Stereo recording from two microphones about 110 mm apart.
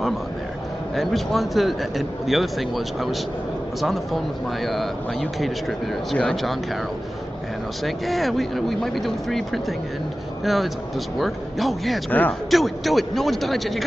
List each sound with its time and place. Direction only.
0.9 s speech: centre (ahead or behind)
7.8 s speech: centre (ahead or behind)
12.1 s speech: 15° left (ahead or behind)
12.4 s speech: centre (ahead or behind)